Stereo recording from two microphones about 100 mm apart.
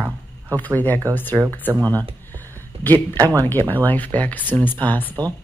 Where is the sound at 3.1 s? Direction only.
30° right (ahead or behind).